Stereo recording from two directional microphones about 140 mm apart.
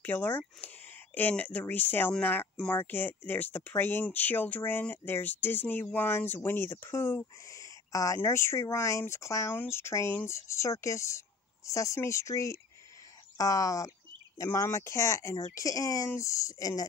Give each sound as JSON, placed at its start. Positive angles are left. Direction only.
{"t": 0.0, "sound": "speech", "side_deg": 15}